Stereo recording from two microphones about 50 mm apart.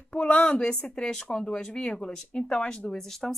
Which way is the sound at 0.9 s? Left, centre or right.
Centre.